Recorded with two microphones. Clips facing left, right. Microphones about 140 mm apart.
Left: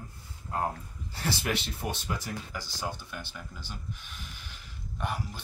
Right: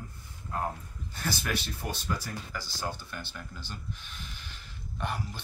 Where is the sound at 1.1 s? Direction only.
25° left (ahead or behind).